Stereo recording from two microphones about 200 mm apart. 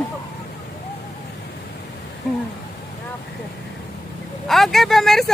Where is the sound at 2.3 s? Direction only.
Centre (ahead or behind).